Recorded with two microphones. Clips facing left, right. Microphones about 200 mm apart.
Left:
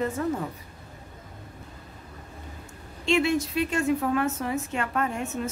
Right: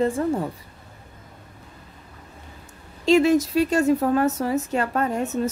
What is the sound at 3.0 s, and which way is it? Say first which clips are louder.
A woman's voice: right 7 dB; 40° right (ahead or behind).